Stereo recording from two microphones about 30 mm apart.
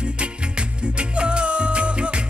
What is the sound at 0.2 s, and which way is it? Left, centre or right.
Music, right.